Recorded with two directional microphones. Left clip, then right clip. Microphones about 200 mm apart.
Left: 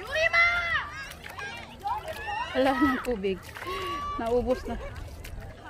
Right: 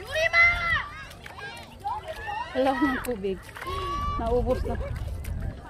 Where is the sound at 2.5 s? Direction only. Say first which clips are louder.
Even; 10° left (ahead or behind).